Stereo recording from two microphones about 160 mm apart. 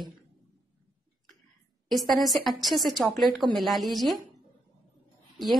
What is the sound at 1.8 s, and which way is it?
A woman's voice, centre (ahead or behind).